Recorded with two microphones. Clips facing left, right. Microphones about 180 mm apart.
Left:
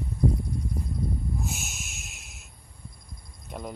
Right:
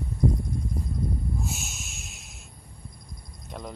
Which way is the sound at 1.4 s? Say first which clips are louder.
Even; centre (ahead or behind).